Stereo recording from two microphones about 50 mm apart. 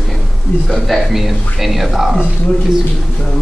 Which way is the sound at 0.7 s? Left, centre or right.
Centre.